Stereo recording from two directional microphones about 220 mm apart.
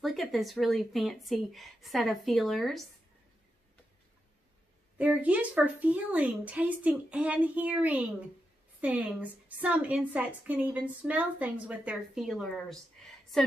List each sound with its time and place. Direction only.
0.0 s speech: centre (ahead or behind)
4.9 s a woman's voice: 5° right (ahead or behind)